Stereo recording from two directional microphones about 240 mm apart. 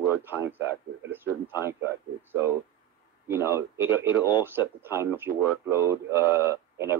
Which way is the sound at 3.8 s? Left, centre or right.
Centre.